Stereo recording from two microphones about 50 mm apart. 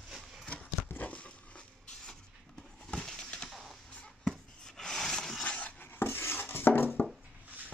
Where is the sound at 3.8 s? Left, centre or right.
Centre.